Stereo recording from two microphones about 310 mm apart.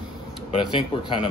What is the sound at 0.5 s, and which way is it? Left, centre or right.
Speech, centre.